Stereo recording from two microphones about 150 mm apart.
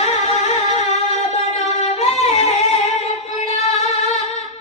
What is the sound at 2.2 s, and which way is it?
Singing, 45° left (ahead or behind).